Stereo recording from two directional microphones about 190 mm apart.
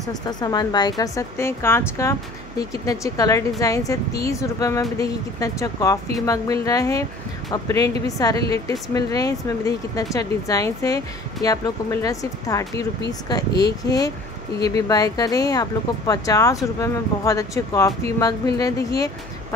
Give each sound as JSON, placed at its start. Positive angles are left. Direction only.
{"t": 0.1, "sound": "a woman's voice", "side_deg": 20}